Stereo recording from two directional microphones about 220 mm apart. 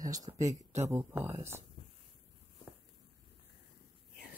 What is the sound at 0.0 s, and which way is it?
Speech, 15° right (ahead or behind).